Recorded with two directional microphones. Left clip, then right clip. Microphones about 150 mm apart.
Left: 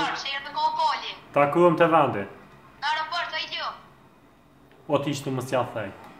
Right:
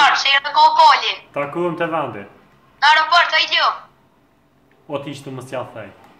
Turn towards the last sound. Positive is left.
turn(degrees=10)  # may be behind; listen again after turning